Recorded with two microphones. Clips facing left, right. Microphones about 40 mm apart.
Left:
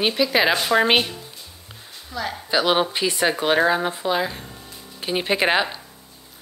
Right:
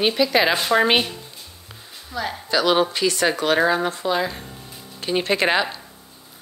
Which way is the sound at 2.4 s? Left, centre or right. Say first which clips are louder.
Right 1 dB; centre.